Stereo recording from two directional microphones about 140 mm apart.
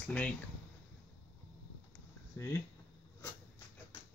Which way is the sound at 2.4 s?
20° left (ahead or behind).